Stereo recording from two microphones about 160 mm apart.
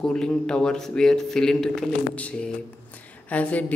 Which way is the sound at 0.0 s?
5° left (ahead or behind).